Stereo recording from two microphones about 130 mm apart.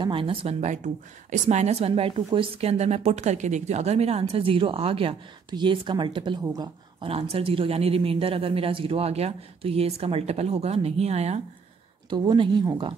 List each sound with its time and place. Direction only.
0.0 s a woman's voice: 40° right (ahead or behind)
6.4 s speech: 25° right (ahead or behind)
7.0 s a woman's voice: 45° right (ahead or behind)
12.1 s speech: 35° right (ahead or behind)